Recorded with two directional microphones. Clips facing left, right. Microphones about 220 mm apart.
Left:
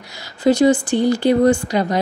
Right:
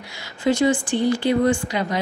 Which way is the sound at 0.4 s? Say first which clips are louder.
Left 5 dB; 35° left (ahead or behind).